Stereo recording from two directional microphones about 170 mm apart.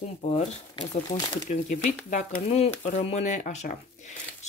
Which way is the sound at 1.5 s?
45° left (ahead or behind).